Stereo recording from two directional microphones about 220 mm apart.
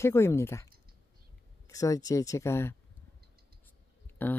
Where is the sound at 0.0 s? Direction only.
10° left (ahead or behind).